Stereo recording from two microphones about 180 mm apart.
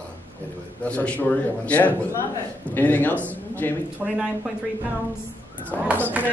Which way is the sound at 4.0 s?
5° right (ahead or behind).